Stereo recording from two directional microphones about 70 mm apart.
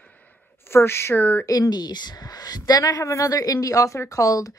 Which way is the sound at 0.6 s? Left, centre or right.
Left.